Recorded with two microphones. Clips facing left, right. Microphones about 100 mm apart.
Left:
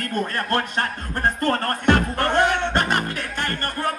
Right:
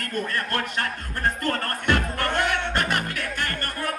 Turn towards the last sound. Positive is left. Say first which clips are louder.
# left 4 dB
turn(degrees=30)  # may be behind; listen again after turning